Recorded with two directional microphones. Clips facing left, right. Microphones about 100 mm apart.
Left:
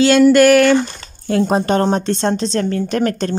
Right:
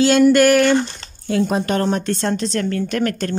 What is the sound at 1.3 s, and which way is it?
Speech, 50° left (ahead or behind).